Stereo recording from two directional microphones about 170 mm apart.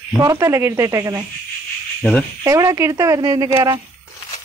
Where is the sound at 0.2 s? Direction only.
15° right (ahead or behind).